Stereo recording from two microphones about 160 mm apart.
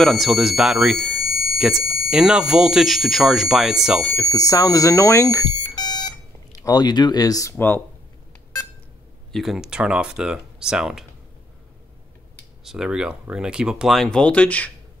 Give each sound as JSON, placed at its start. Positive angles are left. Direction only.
{"t": 0.0, "sound": "speech", "side_deg": 0}
{"t": 4.2, "sound": "speech", "side_deg": 20}
{"t": 9.3, "sound": "speech", "side_deg": 0}
{"t": 12.6, "sound": "speech", "side_deg": -5}